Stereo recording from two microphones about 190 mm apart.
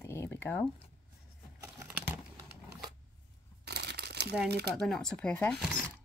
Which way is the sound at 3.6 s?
60° right (ahead or behind).